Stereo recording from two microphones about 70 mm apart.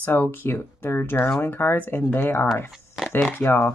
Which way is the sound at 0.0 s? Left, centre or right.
Left.